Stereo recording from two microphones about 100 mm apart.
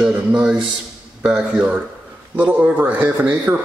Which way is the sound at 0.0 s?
10° right (ahead or behind).